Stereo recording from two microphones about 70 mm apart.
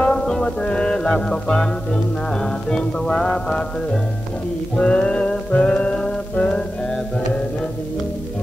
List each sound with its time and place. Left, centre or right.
0.0 s music: centre